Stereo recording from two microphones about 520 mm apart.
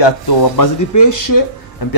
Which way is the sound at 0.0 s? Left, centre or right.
Left.